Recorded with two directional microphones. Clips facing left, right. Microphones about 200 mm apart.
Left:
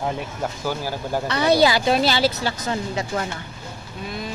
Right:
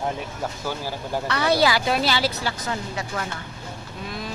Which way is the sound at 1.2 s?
20° left (ahead or behind).